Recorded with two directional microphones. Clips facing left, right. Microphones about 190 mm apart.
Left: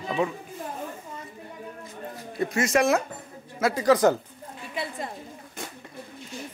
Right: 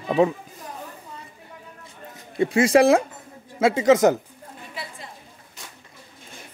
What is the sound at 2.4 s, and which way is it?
Speech, 30° right (ahead or behind).